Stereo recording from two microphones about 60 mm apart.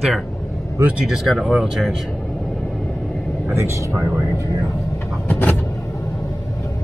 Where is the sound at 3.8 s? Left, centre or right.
Right.